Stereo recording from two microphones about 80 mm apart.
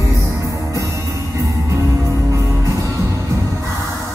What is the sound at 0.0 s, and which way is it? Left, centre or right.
Music, right.